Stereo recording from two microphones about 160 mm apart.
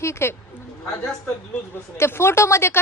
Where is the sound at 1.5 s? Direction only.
15° left (ahead or behind).